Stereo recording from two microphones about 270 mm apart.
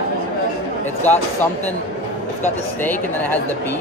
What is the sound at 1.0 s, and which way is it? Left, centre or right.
Speech, centre.